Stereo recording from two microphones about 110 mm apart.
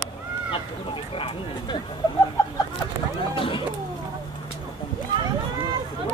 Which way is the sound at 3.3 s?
50° left (ahead or behind).